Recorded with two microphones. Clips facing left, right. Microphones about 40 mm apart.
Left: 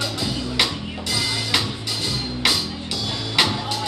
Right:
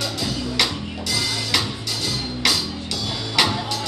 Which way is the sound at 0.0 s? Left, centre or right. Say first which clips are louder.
Even; centre.